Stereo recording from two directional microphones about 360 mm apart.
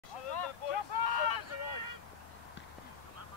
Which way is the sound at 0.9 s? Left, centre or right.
Left.